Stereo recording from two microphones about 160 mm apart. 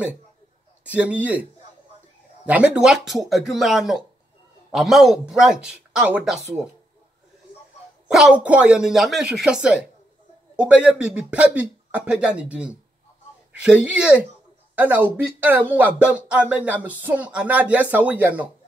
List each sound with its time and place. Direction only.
0.8 s speech: 10° right (ahead or behind)
8.1 s speech: 5° right (ahead or behind)